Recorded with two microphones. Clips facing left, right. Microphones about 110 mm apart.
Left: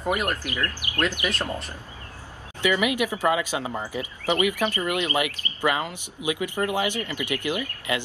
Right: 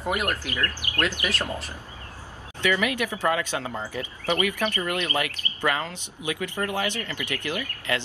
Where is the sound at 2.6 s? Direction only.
15° left (ahead or behind).